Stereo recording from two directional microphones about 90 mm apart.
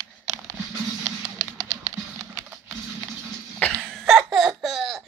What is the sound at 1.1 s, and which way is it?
Music, 25° right (ahead or behind).